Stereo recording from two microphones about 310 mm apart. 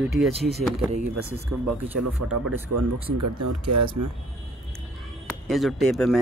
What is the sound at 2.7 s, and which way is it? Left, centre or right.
Speech, right.